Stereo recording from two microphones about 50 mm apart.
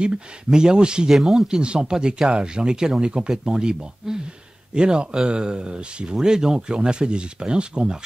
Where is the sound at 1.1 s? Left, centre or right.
Centre.